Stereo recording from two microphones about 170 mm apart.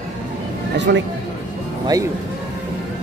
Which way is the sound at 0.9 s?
90° right.